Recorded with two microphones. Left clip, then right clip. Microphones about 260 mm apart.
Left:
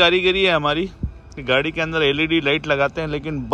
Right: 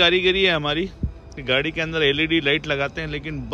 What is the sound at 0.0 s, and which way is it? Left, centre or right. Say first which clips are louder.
A man's voice: left 2 dB; centre.